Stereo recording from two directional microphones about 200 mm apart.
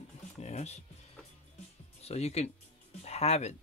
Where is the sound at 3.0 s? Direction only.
30° left (ahead or behind).